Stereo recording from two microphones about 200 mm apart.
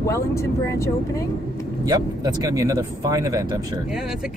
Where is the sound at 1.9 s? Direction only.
20° right (ahead or behind).